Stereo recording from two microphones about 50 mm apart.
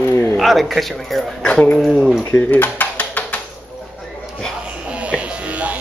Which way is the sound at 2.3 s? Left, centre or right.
Left.